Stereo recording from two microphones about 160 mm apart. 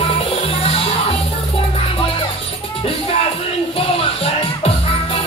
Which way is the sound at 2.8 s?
35° left (ahead or behind).